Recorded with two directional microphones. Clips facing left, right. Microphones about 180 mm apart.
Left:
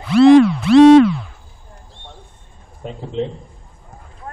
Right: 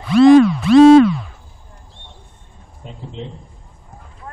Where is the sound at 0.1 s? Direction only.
70° left (ahead or behind).